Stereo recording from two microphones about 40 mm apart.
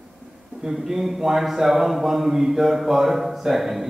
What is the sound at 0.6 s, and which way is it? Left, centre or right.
Speech, centre.